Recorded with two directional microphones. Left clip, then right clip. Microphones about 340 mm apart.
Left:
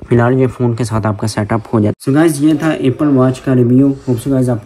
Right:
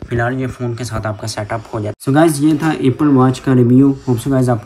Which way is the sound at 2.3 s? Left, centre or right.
Centre.